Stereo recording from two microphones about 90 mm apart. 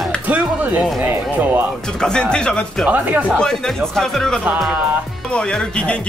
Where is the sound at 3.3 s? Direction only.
5° left (ahead or behind).